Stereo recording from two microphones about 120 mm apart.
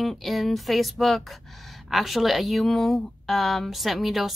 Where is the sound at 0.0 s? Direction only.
Centre (ahead or behind).